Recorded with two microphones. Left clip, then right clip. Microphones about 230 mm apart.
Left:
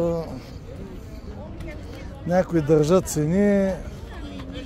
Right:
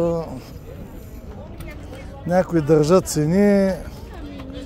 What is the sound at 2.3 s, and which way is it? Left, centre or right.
Speech, centre.